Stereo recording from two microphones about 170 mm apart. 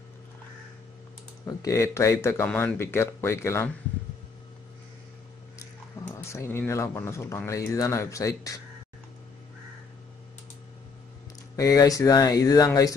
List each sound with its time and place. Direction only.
1.4 s speech: 20° left (ahead or behind)
5.6 s speech: 15° left (ahead or behind)
11.5 s speech: 20° left (ahead or behind)